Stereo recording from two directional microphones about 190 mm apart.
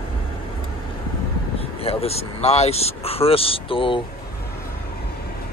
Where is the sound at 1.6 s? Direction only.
30° left (ahead or behind).